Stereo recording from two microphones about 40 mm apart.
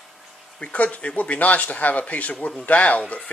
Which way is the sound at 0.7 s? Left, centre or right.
Left.